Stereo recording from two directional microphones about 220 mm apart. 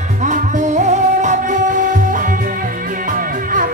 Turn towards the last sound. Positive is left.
turn(degrees=-40)  # may be behind; listen again after turning